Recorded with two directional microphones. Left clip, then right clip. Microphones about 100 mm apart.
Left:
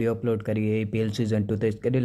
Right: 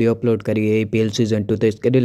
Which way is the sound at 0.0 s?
40° right (ahead or behind).